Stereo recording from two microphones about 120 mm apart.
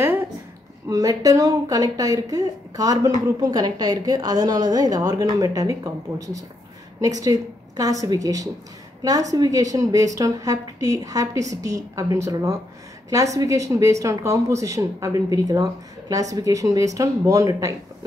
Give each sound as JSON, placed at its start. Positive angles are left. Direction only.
{"t": 0.8, "sound": "speech", "side_deg": -30}